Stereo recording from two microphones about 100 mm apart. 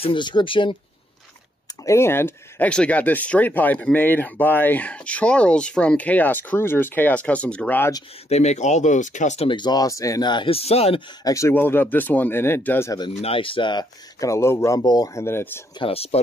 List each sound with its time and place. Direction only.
0.0 s speech: 55° left (ahead or behind)
1.9 s speech: 25° left (ahead or behind)
2.7 s speech: 10° left (ahead or behind)
8.3 s speech: 90° left
9.6 s speech: 40° left (ahead or behind)
10.2 s speech: 50° left (ahead or behind)
10.5 s speech: 90° left
11.2 s speech: 30° left (ahead or behind)
11.5 s speech: 20° left (ahead or behind)
13.2 s speech: 65° left (ahead or behind)
14.2 s speech: 30° left (ahead or behind)
14.8 s speech: 40° left (ahead or behind)
15.1 s speech: 25° left (ahead or behind)
15.8 s speech: 85° left